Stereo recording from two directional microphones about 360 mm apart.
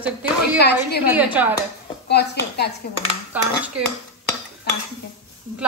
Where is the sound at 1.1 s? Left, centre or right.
Centre.